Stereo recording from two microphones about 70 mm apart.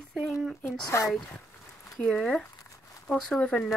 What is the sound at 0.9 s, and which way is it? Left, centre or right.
Speech, left.